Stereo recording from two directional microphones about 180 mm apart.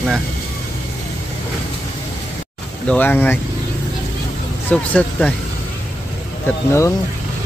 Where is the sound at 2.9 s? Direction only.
10° left (ahead or behind).